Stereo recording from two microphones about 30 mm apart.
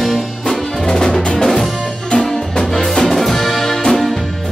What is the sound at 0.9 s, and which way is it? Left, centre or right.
Music, left.